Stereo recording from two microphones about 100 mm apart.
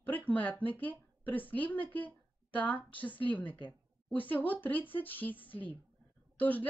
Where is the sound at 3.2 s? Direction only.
15° left (ahead or behind).